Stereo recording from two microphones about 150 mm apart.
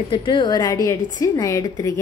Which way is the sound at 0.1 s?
30° left (ahead or behind).